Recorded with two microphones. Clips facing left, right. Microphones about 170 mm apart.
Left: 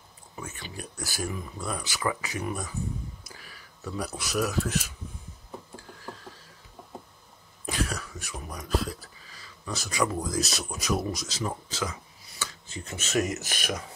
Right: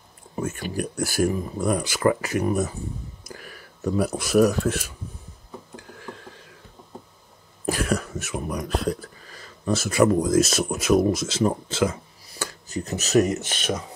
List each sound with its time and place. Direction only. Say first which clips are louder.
0.4 s speech: right 12 dB; 50° right (ahead or behind)
5.8 s a sound: right 3 dB; 60° right (ahead or behind)
7.7 s whispering: right 7 dB; 55° right (ahead or behind)
8.3 s speech: right 4 dB; 55° right (ahead or behind); by 13.8 s 25° right (ahead or behind)